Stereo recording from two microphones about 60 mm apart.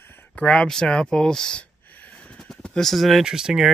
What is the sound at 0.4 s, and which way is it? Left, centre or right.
Speech, centre.